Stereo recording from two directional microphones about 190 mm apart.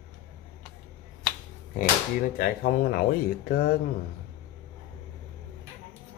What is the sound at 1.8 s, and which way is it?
Speech, 45° left (ahead or behind).